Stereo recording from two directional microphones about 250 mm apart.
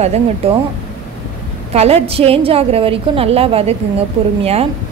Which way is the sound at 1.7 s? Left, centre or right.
Right.